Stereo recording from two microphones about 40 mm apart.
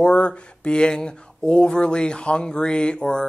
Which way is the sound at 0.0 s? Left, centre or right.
Left.